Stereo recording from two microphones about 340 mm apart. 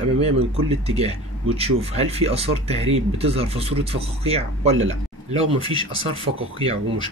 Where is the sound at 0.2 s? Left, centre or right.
Centre.